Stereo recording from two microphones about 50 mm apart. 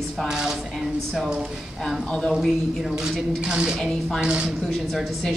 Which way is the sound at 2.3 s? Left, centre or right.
Centre.